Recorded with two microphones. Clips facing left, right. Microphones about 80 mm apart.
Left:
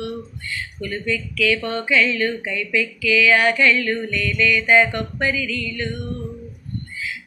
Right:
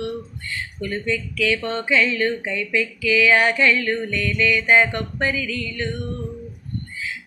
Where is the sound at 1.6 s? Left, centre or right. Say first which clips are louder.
Left 1 dB; right.